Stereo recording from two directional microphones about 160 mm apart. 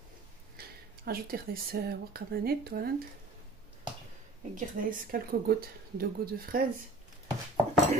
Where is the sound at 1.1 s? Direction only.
65° right (ahead or behind).